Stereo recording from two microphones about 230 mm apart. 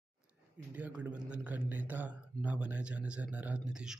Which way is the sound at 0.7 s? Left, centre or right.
Centre.